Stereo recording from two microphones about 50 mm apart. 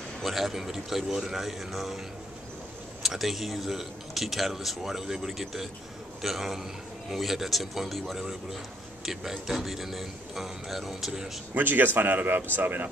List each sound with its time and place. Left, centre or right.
0.2 s speech: centre
3.0 s speech: centre
11.5 s speech: right